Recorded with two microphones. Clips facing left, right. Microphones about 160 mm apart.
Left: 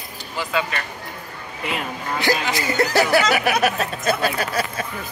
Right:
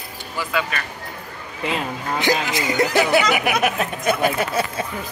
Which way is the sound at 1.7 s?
20° right (ahead or behind).